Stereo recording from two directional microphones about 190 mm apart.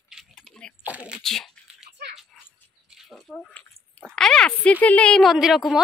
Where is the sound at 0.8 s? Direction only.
5° right (ahead or behind).